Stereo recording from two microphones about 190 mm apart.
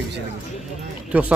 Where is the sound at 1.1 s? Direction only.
5° right (ahead or behind).